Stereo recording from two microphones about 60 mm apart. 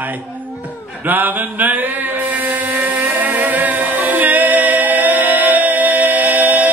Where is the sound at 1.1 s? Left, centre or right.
Right.